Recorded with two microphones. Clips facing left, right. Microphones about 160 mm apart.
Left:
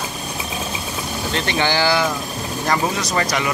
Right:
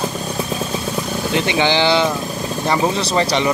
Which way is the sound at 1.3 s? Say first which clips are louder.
Right 4 dB; 15° right (ahead or behind).